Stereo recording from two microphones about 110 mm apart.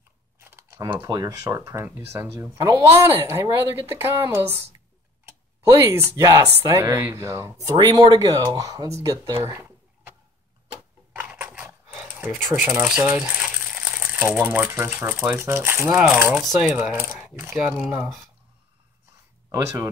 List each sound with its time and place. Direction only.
0.4 s a sound: 25° right (ahead or behind)
1.0 s a woman's voice: 35° right (ahead or behind)
2.8 s a woman's voice: 20° right (ahead or behind)
5.9 s a woman's voice: 25° right (ahead or behind)
7.7 s speech: 45° right (ahead or behind); by 10.1 s 25° right (ahead or behind)
11.1 s a sound: 15° right (ahead or behind)
12.3 s a woman's voice: centre (ahead or behind)
16.9 s a woman's voice: 25° right (ahead or behind)
17.6 s speech: 10° right (ahead or behind)
19.5 s a woman's voice: 30° right (ahead or behind)